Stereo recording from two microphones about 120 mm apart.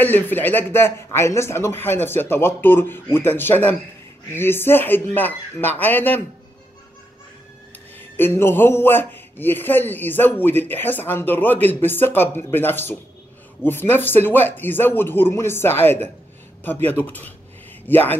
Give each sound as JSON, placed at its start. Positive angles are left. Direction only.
{"t": 0.0, "sound": "a man's voice", "side_deg": 15}
{"t": 8.2, "sound": "a man's voice", "side_deg": 20}